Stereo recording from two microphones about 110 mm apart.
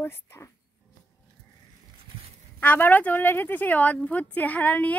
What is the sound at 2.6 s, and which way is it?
A woman's voice, 15° left (ahead or behind).